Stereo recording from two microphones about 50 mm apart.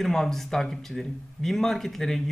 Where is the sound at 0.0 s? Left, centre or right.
Centre.